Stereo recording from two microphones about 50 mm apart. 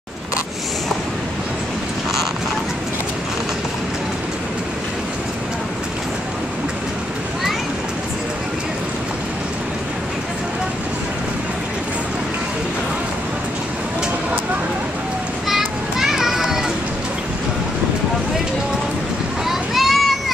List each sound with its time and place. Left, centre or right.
15.4 s children playing: centre
19.4 s boat: centre